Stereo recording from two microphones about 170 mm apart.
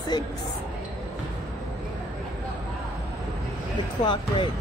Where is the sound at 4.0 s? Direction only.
30° left (ahead or behind).